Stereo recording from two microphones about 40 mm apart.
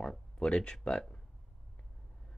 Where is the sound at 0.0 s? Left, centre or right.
Left.